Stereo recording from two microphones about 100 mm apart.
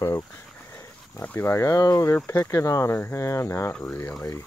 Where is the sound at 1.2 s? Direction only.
20° left (ahead or behind).